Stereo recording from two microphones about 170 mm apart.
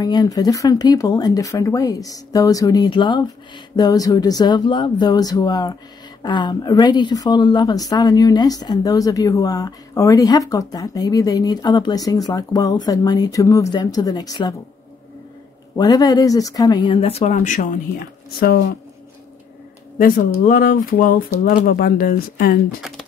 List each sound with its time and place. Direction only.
0.0 s speech: 25° left (ahead or behind)
15.7 s speech: 20° left (ahead or behind); by 18.6 s 65° left (ahead or behind)
20.0 s speech: 55° left (ahead or behind)